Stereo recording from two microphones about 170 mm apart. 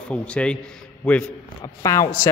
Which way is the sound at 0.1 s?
5° left (ahead or behind).